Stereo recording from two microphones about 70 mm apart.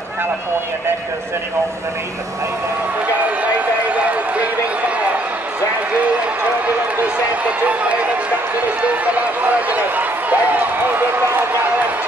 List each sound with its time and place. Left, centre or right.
3.8 s run: right
7.0 s speech: right
11.2 s run: right